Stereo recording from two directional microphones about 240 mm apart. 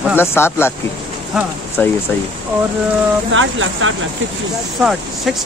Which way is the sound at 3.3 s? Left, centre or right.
Right.